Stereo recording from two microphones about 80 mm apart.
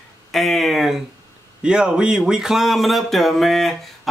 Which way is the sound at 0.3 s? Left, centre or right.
Centre.